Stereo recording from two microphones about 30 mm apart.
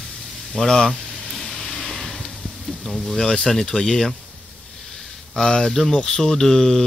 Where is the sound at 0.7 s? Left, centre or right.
Centre.